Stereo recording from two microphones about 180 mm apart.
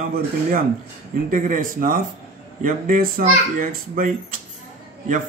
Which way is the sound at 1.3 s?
50° right (ahead or behind).